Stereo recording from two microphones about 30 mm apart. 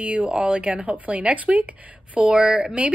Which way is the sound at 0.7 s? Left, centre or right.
Right.